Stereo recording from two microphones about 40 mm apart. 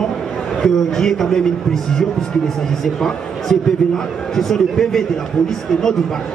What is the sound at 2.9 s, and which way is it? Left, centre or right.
A man's voice, centre.